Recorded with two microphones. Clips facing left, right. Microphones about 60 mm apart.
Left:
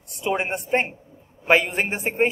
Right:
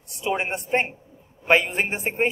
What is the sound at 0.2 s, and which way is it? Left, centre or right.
A woman's voice, centre.